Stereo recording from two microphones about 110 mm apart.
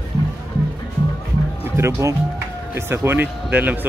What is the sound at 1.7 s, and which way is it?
Speech, 25° right (ahead or behind).